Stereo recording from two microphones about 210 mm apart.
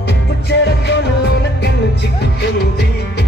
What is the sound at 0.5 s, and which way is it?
Music, 55° left (ahead or behind).